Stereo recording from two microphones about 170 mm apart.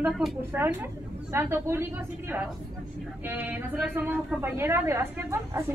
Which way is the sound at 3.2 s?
10° right (ahead or behind).